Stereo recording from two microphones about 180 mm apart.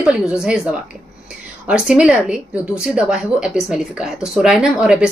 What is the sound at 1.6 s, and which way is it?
A woman's voice, 5° right (ahead or behind).